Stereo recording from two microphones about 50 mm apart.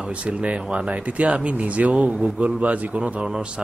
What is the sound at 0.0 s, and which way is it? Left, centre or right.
Speech, right.